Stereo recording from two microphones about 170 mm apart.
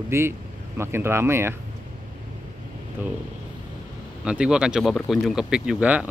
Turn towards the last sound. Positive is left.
turn(degrees=-10)  # may be behind; listen again after turning